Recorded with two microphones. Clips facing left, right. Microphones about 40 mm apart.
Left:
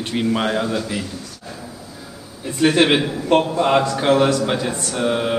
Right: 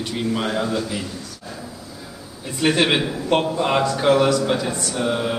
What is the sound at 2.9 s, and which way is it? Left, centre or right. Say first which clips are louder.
Speech: left 3 dB; centre.